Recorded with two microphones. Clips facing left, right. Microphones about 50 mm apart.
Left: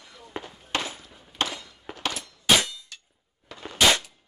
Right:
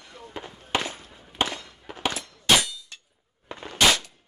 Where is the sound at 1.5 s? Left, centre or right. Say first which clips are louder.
Right 2 dB; right.